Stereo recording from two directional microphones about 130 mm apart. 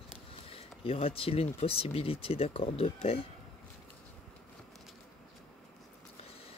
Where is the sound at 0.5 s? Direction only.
45° left (ahead or behind).